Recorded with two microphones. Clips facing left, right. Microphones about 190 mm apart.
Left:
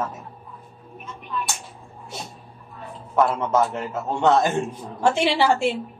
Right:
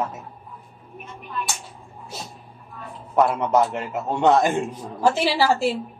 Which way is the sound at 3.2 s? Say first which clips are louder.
Right 1 dB; 15° right (ahead or behind).